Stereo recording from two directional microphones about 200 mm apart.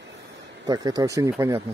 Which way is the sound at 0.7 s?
20° right (ahead or behind).